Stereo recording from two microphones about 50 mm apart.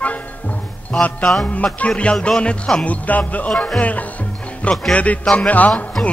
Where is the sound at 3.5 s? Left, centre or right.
Centre.